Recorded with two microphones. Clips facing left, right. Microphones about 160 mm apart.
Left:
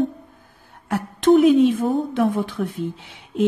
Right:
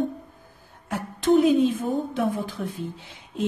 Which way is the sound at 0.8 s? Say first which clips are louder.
Left 5 dB; 70° left (ahead or behind).